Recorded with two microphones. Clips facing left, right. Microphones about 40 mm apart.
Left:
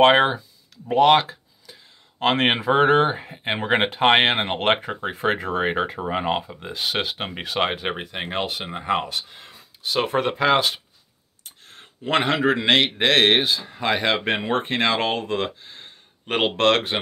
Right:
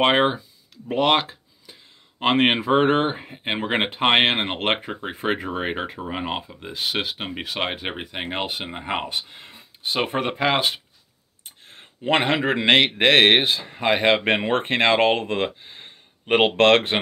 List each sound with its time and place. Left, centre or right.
0.0 s speech: centre
11.4 s a sound: right
13.0 s speech: right